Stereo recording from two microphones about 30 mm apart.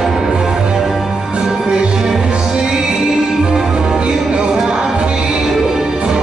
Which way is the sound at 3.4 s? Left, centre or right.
Right.